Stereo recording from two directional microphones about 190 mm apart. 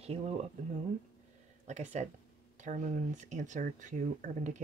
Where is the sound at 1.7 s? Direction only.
35° right (ahead or behind).